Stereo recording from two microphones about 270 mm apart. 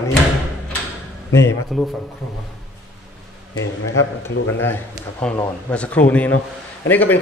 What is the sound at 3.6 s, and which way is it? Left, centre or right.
Speech, left.